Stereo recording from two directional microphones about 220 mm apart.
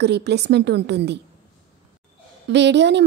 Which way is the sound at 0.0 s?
50° right (ahead or behind).